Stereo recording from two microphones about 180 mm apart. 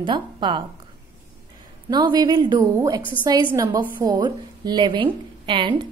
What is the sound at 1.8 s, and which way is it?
A woman's voice, 25° right (ahead or behind).